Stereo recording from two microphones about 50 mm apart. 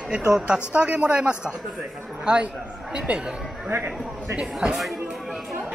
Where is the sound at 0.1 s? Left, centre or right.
Centre.